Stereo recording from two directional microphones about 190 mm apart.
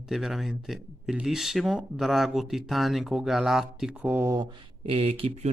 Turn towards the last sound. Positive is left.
turn(degrees=-30)  # may be behind; listen again after turning